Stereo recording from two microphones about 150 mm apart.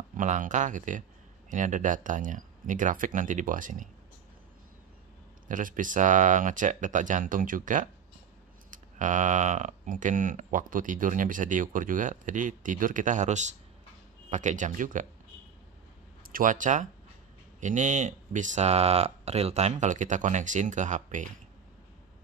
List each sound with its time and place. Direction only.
0.2 s speech: 60° right (ahead or behind)
5.5 s speech: 60° right (ahead or behind)
16.3 s speech: 65° right (ahead or behind)